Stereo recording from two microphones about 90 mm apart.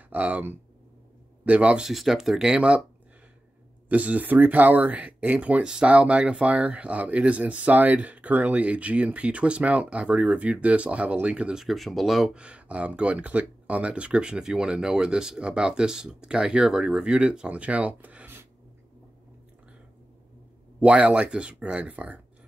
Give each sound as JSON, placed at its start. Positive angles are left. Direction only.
{"t": 0.1, "sound": "speech", "side_deg": -20}
{"t": 1.9, "sound": "speech", "side_deg": -5}
{"t": 3.9, "sound": "speech", "side_deg": -15}
{"t": 12.4, "sound": "speech", "side_deg": -15}
{"t": 20.8, "sound": "speech", "side_deg": -15}